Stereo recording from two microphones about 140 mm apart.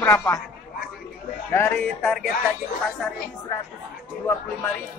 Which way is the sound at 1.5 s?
15° left (ahead or behind).